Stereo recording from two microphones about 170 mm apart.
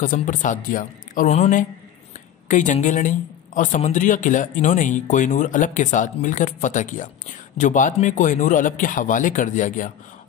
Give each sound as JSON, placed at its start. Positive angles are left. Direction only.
{"t": 0.0, "sound": "a woman's voice", "side_deg": 50}